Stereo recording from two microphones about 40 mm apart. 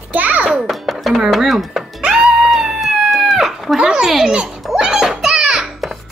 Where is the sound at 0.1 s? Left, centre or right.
Right.